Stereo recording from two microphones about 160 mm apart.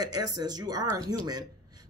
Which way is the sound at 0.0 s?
25° right (ahead or behind).